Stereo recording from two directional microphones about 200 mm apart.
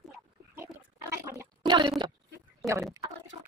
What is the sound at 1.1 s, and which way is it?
Gargling, 15° right (ahead or behind).